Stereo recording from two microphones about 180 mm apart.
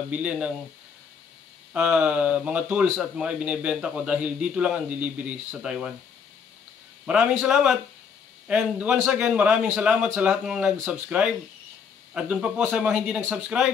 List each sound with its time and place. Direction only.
0.1 s a man's voice: 5° right (ahead or behind)
1.7 s a man's voice: 5° right (ahead or behind)
7.1 s a man's voice: 5° right (ahead or behind)